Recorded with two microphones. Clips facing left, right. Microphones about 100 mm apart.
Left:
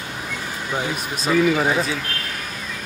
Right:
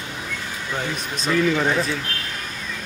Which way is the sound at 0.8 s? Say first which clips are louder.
Left 1 dB; 5° left (ahead or behind).